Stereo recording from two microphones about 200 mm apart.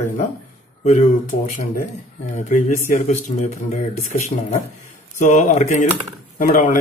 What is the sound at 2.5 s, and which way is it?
Speech, 35° left (ahead or behind).